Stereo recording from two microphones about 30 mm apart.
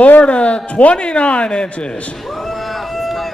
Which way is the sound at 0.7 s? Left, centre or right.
Left.